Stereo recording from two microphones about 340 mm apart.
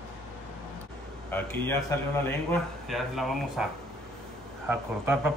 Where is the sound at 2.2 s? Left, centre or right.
Centre.